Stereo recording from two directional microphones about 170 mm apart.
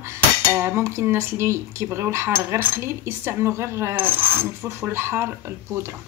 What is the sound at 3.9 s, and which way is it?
Mechanisms, 30° right (ahead or behind).